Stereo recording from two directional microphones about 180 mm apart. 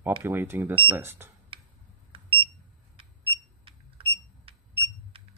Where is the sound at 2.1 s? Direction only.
30° right (ahead or behind).